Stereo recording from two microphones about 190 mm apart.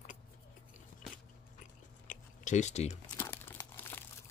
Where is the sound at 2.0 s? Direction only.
40° left (ahead or behind).